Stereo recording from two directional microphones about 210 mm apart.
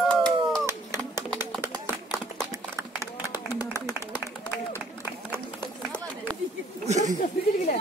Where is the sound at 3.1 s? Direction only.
20° left (ahead or behind).